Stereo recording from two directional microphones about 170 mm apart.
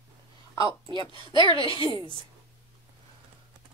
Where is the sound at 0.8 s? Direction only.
30° right (ahead or behind).